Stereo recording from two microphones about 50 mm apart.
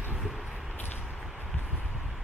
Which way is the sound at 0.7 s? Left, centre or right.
Left.